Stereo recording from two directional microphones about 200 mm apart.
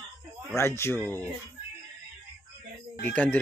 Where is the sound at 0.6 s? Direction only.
15° left (ahead or behind).